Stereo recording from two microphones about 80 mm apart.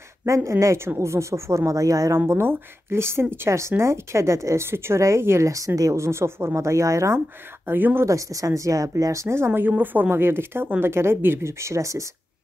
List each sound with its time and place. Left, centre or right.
0.2 s speech: right
2.1 s speech: right
7.6 s speech: right
8.1 s speech: right